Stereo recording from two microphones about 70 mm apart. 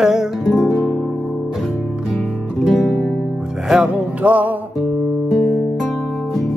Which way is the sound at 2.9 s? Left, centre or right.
Left.